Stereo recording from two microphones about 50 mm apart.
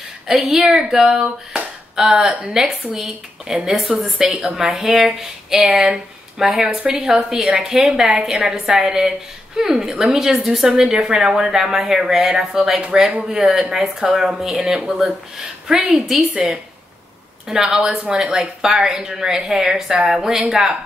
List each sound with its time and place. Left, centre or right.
0.3 s a woman's voice: centre
17.5 s a woman's voice: centre
20.1 s speech: centre
20.3 s a woman's voice: centre